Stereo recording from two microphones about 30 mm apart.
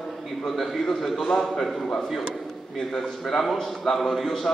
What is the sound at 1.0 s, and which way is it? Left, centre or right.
Speech, centre.